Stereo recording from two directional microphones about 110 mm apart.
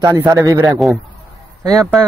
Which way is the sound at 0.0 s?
35° right (ahead or behind).